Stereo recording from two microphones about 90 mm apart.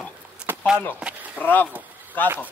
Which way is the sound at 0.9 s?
15° right (ahead or behind).